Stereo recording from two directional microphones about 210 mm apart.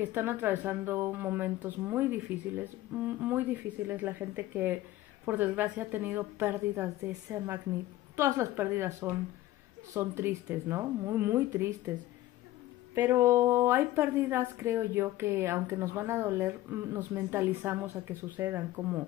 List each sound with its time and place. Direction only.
0.0 s a woman's voice: 10° right (ahead or behind)
12.9 s a woman's voice: 15° right (ahead or behind)